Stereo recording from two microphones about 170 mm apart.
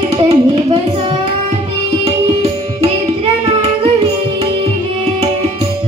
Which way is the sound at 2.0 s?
35° right (ahead or behind).